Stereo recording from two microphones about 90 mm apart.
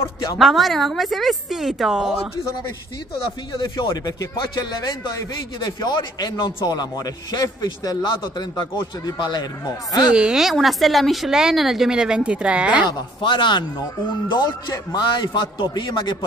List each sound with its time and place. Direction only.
0.0 s a woman's voice: 40° left (ahead or behind)
0.4 s speech: centre (ahead or behind)
3.5 s a man's voice: 50° left (ahead or behind)
8.0 s a man's voice: 60° left (ahead or behind)
10.0 s speech: 10° right (ahead or behind)
13.2 s speech: 65° left (ahead or behind)
14.7 s a man's voice: 50° left (ahead or behind)